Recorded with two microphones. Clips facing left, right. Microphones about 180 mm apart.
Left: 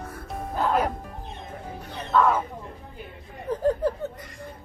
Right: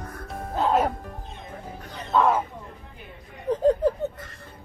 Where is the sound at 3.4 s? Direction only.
20° right (ahead or behind).